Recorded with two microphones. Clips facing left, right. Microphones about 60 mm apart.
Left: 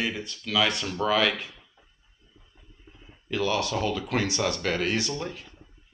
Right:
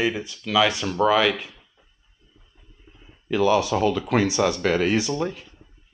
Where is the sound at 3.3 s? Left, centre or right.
Centre.